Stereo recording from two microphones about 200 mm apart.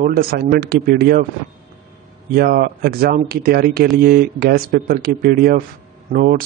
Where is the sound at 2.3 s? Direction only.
50° right (ahead or behind).